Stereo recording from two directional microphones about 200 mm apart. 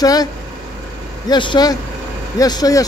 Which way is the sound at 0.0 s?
20° left (ahead or behind).